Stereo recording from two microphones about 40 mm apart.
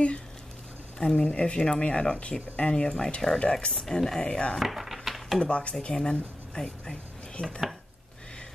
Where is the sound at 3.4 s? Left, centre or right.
Left.